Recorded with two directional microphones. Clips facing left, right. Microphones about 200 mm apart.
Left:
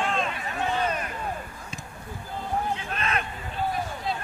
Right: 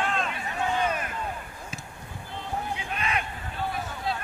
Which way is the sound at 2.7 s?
15° right (ahead or behind).